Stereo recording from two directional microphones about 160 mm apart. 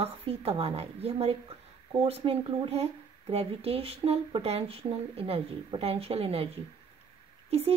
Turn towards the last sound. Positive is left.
turn(degrees=-40)  # may be behind; listen again after turning